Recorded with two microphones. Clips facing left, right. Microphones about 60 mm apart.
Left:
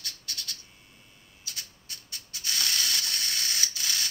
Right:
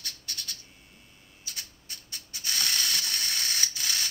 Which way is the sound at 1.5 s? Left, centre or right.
Right.